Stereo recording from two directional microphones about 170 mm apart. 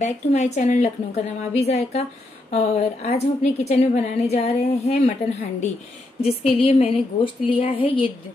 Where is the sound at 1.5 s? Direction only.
40° left (ahead or behind).